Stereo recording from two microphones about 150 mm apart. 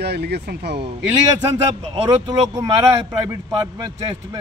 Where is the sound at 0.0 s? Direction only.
90° right.